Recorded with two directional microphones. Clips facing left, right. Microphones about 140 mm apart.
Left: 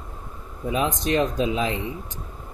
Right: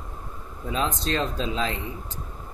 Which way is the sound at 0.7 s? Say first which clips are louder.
Left 3 dB; 15° left (ahead or behind).